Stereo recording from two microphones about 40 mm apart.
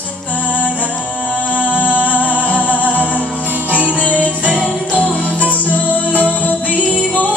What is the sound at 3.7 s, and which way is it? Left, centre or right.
Music, right.